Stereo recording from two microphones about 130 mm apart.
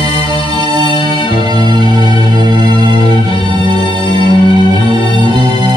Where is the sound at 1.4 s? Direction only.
35° right (ahead or behind).